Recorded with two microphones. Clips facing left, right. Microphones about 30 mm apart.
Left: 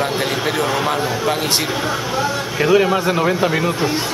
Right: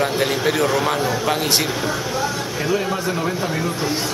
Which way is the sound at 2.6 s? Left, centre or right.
Left.